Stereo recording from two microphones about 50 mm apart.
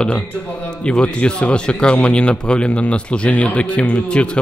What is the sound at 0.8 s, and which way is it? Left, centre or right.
A man's voice, centre.